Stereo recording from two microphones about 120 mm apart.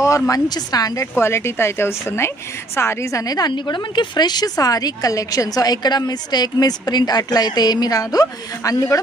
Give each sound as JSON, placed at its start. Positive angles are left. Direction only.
{"t": 0.0, "sound": "a woman's voice", "side_deg": 25}